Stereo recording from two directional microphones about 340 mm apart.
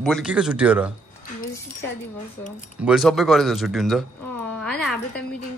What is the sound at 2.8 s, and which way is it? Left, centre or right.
A man's voice, centre.